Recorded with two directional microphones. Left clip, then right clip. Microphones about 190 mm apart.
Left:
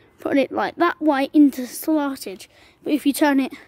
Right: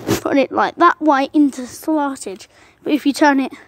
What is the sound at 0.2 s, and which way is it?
A woman's voice, centre (ahead or behind).